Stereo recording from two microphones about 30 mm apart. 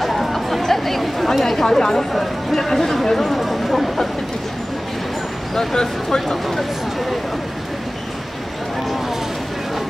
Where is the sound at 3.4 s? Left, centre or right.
Centre.